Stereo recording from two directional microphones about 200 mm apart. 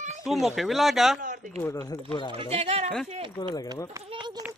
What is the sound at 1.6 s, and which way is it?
Speech, 15° left (ahead or behind).